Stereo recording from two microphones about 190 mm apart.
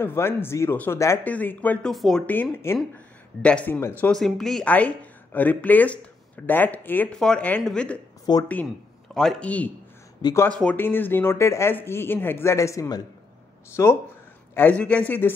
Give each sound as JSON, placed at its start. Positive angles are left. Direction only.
{"t": 0.0, "sound": "speech", "side_deg": 10}
{"t": 8.3, "sound": "speech", "side_deg": 20}
{"t": 9.1, "sound": "a man's voice", "side_deg": 0}